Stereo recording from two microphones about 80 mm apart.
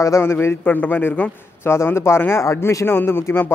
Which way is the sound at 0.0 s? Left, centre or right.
Left.